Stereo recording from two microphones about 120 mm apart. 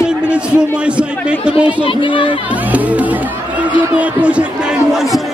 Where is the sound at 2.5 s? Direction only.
10° right (ahead or behind).